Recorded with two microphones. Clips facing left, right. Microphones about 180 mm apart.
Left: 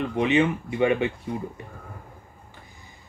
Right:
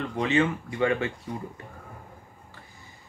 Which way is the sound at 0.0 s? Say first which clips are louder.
Left 3 dB; 20° left (ahead or behind).